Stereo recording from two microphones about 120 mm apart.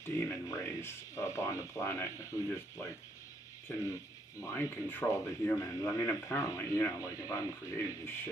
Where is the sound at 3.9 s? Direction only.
25° left (ahead or behind).